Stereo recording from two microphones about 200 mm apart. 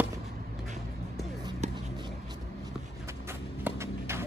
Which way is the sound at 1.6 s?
35° right (ahead or behind).